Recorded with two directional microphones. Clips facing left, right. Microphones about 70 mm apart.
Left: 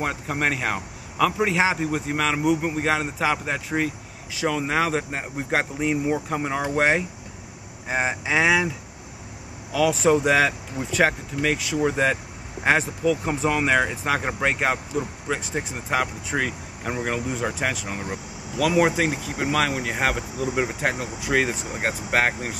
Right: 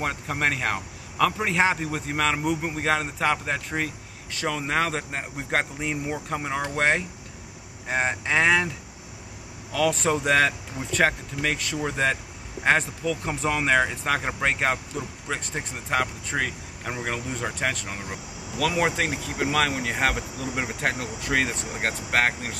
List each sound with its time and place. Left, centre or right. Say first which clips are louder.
0.0 s a man's voice: left 1 dB; centre